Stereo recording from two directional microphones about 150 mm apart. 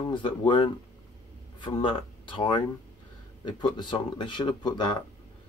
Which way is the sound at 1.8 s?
35° left (ahead or behind).